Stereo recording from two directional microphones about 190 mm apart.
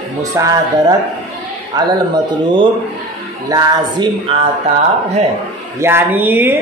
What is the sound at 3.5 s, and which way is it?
Speech, 25° right (ahead or behind).